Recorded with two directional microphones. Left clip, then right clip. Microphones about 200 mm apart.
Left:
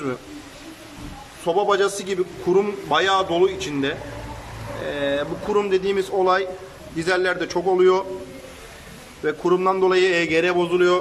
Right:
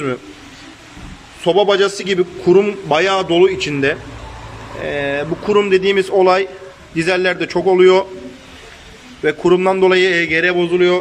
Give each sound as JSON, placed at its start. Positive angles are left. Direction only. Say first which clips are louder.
{"t": 1.4, "sound": "a man's voice", "louder": "right 6 dB", "side_deg": -10}
{"t": 9.2, "sound": "a man's voice", "louder": "right 6 dB", "side_deg": -5}